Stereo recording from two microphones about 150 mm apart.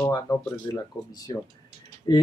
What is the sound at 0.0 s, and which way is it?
Speech, 20° left (ahead or behind).